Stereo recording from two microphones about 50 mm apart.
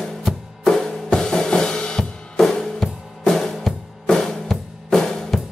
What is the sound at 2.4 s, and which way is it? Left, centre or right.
Music, centre.